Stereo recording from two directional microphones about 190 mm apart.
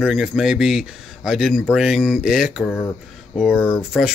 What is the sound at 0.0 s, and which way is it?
Speech, 5° right (ahead or behind).